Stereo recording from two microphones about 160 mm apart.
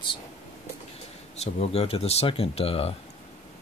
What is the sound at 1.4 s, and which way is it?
Speech, 40° left (ahead or behind).